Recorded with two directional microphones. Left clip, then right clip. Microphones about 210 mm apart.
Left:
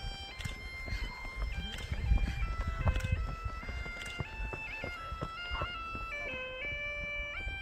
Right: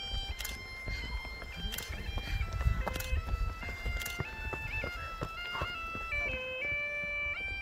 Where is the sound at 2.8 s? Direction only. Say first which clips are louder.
Right 1 dB; 40° right (ahead or behind).